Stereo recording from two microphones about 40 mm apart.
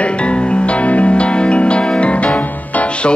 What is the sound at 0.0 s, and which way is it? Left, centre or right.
Music, left.